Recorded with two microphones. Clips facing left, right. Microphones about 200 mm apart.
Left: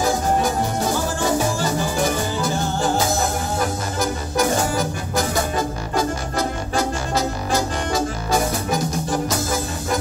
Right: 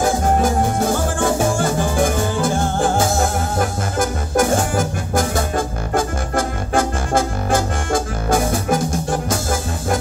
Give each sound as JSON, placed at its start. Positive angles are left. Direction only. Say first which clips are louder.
{"t": 0.0, "sound": "music", "louder": "right 3 dB", "side_deg": -50}